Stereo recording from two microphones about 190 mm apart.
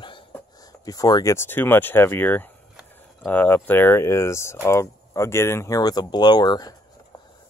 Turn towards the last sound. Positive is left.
turn(degrees=20)  # may be behind; listen again after turning